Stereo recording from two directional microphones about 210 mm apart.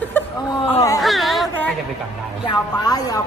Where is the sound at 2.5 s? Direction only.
20° left (ahead or behind).